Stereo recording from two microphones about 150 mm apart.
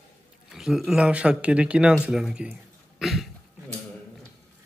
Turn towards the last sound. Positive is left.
turn(degrees=0)  # may be behind; listen again after turning